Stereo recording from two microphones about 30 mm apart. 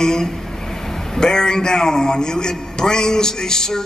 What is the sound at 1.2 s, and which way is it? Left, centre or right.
A man's voice, left.